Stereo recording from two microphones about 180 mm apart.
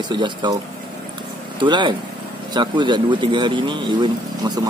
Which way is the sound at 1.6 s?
25° right (ahead or behind).